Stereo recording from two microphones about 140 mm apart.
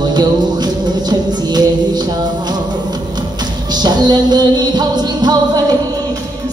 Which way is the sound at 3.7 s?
30° right (ahead or behind).